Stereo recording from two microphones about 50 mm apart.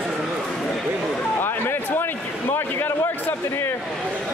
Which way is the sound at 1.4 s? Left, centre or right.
Left.